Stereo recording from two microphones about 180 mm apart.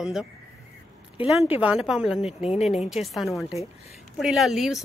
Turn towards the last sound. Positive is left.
turn(degrees=0)  # may be behind; listen again after turning